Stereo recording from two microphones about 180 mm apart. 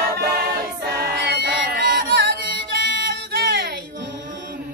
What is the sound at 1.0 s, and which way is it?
Music, 65° right (ahead or behind).